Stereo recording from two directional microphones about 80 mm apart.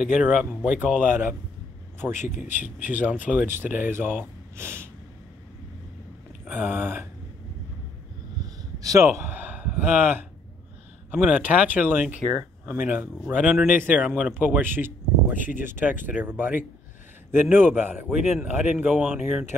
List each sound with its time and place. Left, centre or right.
0.0 s speech: centre; by 4.8 s right
6.7 s speech: right
8.7 s speech: right
9.2 s a sound: right
11.1 s speech: centre
13.3 s speech: centre